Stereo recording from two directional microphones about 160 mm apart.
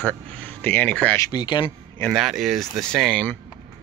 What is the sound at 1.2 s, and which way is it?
Speech, 25° left (ahead or behind).